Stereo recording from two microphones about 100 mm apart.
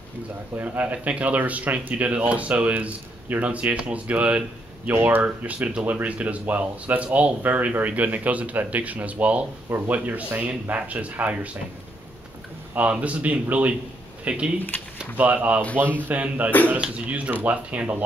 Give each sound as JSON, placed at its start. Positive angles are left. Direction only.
{"t": 0.6, "sound": "speech", "side_deg": -15}
{"t": 12.7, "sound": "speech", "side_deg": -15}